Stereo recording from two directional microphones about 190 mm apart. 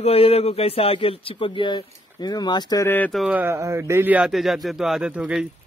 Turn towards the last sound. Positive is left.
turn(degrees=-5)  # may be behind; listen again after turning